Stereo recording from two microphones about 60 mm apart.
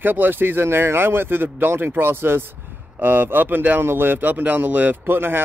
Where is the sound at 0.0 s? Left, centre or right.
Right.